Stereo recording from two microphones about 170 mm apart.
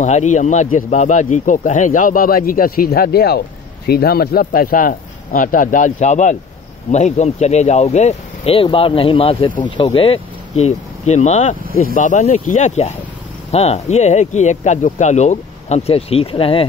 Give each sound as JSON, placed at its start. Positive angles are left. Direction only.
{"t": 0.0, "sound": "speech", "side_deg": 45}